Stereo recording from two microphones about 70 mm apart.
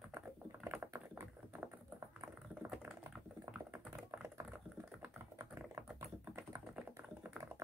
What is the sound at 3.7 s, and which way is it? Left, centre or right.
Computer keyboard, right.